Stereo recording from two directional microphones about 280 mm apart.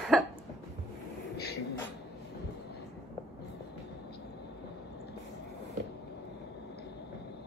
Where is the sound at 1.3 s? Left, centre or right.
Left.